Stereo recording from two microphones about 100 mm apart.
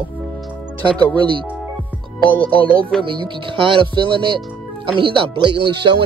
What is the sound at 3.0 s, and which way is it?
Speech, 55° right (ahead or behind).